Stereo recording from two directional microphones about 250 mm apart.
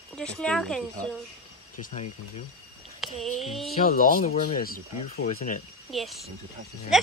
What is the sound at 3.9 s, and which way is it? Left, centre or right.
Speech, left.